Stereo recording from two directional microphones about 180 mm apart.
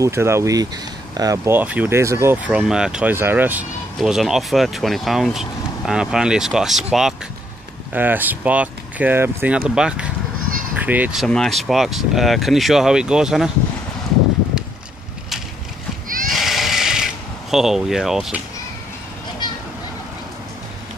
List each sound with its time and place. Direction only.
0.0 s speech: 15° right (ahead or behind)
16.3 s bleat: centre (ahead or behind)